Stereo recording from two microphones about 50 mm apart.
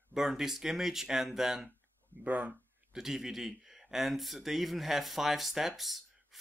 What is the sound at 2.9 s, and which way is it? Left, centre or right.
Speech, centre.